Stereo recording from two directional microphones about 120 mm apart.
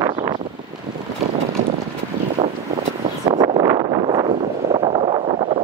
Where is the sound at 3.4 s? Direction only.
35° right (ahead or behind).